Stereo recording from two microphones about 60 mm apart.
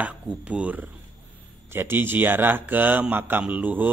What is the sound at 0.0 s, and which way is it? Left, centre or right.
Speech, right.